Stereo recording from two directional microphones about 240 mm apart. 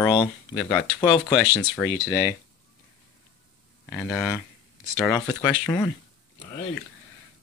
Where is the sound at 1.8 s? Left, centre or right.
Centre.